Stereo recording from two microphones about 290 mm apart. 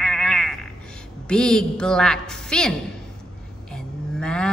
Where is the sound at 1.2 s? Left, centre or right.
Centre.